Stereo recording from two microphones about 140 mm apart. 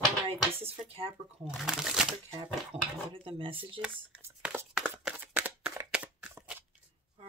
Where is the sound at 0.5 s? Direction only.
45° right (ahead or behind).